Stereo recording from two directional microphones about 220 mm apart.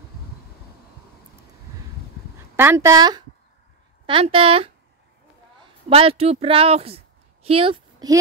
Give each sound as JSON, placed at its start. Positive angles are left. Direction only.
{"t": 2.5, "sound": "a woman's voice", "side_deg": -10}
{"t": 5.9, "sound": "a woman's voice", "side_deg": -25}